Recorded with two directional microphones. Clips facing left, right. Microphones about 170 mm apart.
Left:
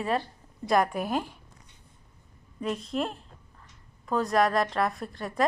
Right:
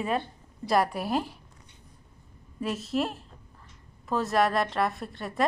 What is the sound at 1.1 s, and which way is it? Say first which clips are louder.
Speech: right 1 dB; 35° right (ahead or behind).